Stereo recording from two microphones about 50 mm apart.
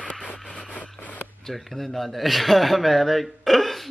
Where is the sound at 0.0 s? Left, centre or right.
Left.